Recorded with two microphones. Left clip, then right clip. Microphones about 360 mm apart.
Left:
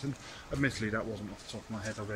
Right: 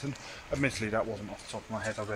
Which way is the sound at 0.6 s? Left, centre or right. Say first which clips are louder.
Right 2 dB; centre.